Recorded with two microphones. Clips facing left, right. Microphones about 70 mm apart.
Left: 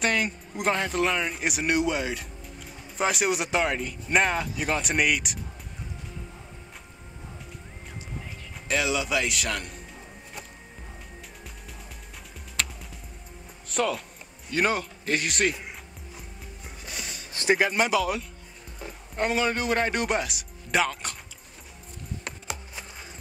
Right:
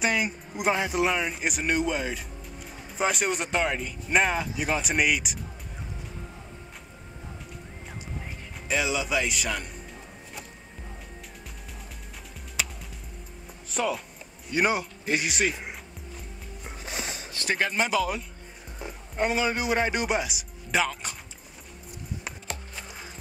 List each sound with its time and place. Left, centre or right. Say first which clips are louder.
0.0 s speech: even; centre
8.6 s speech: left 1 dB; centre
12.6 s music: left 1 dB; centre
13.7 s speech: left 1 dB; centre
16.6 s music: right 4 dB; right
17.3 s a sound: left 7 dB; left
17.6 s a man's voice: left 2 dB; centre
22.3 s music: left 2 dB; centre